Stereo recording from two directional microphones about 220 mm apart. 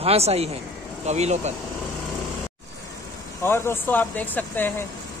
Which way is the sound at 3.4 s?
10° left (ahead or behind).